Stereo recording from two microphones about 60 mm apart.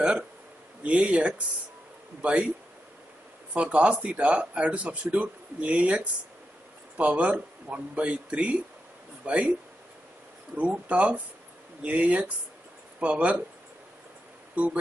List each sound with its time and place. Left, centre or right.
0.8 s speech: centre
3.5 s speech: right
10.6 s speech: right
14.5 s speech: right